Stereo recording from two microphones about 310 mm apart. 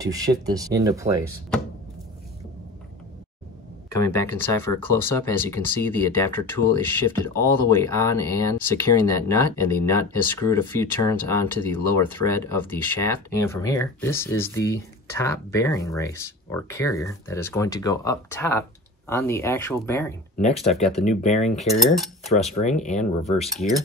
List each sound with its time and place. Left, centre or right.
0.0 s speech: centre
3.9 s speech: centre
20.7 s cutlery: centre
21.0 s speech: left
21.5 s cutlery: centre
22.6 s speech: left
23.4 s cutlery: centre